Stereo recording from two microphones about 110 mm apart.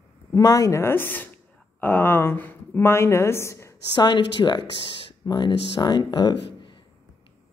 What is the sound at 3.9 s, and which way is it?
Speech, 45° left (ahead or behind).